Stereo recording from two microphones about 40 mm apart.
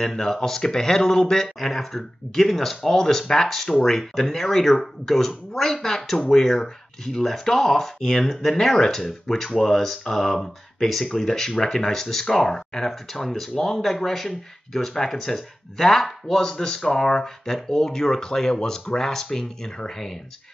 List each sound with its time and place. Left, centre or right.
0.0 s speech: centre